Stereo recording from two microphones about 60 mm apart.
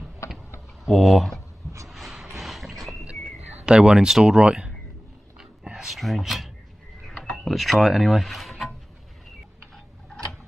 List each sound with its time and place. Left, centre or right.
0.8 s speech: centre
1.9 s horse: centre
3.3 s speech: centre
5.6 s a sound: centre
5.9 s speech: centre
7.2 s a sound: centre
7.4 s speech: centre